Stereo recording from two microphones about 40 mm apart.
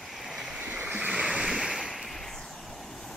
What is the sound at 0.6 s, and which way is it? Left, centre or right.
Waves, right.